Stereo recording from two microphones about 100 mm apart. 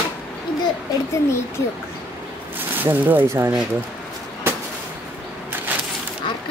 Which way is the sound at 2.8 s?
20° right (ahead or behind).